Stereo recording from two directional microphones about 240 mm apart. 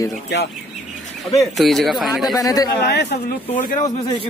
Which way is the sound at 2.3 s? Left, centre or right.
Centre.